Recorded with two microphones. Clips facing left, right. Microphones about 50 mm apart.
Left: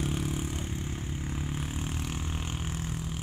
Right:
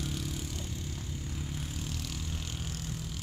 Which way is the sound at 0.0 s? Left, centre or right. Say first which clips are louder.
Left 5 dB; left.